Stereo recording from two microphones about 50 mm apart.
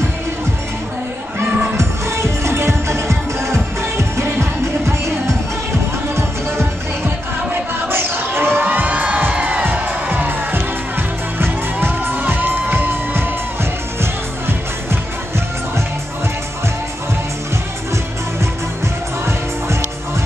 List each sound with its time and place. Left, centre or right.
1.8 s music: right
6.1 s music: right
7.9 s crowd: right
8.8 s music: right
12.2 s music: right